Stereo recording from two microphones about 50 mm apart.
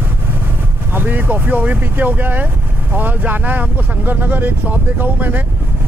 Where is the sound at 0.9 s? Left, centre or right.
Right.